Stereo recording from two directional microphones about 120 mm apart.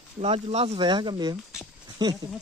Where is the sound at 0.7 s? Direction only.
40° right (ahead or behind).